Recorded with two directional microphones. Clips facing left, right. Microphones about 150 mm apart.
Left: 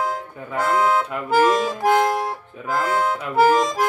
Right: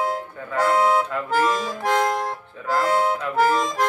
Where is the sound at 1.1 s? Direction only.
10° left (ahead or behind).